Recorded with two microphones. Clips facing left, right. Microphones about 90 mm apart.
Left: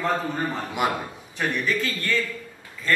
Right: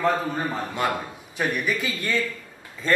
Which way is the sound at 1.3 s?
10° right (ahead or behind).